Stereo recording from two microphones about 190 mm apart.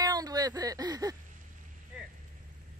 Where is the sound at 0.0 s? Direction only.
20° right (ahead or behind).